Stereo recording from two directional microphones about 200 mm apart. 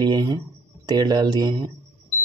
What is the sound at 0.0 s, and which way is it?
Speech, 20° right (ahead or behind).